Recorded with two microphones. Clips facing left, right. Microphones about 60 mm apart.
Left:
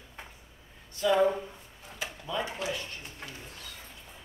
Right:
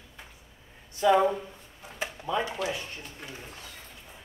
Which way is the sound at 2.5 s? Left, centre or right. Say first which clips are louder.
Right 3 dB; right.